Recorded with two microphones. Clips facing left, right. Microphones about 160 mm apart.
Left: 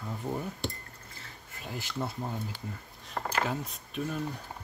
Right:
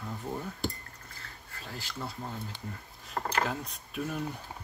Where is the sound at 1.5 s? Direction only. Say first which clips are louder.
Left 4 dB; 20° left (ahead or behind).